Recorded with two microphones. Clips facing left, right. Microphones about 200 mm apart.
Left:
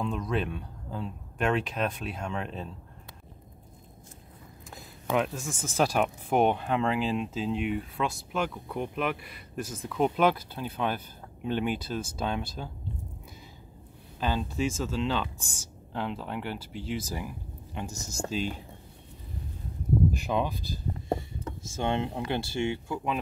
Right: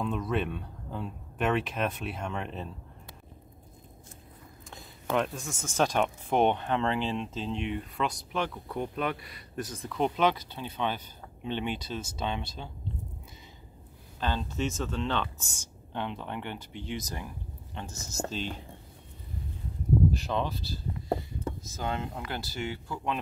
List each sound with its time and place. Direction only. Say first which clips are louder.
0.0 s speech: even; 5° right (ahead or behind)
4.6 s a sound: left 1 dB; 5° left (ahead or behind)
5.6 s speech: left 1 dB; 10° left (ahead or behind)
14.2 s speech: left 2 dB; 10° left (ahead or behind)
20.1 s speech: left 2 dB; 15° left (ahead or behind)
21.6 s speech: left 8 dB; 25° left (ahead or behind)